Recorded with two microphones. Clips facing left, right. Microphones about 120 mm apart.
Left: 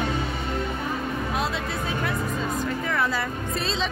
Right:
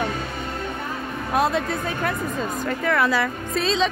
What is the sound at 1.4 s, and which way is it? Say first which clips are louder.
Speech: right 6 dB; 50° right (ahead or behind).